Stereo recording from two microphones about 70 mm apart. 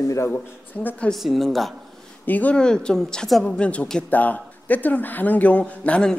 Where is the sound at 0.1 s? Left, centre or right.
Left.